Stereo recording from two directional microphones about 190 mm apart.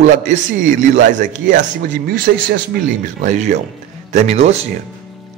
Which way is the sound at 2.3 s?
60° right (ahead or behind).